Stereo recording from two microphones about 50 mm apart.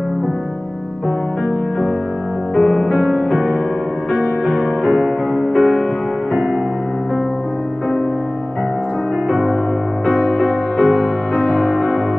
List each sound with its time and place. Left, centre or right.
2.5 s music: centre
3.0 s music: left
4.8 s music: centre
5.3 s music: centre
9.3 s music: centre
10.0 s music: left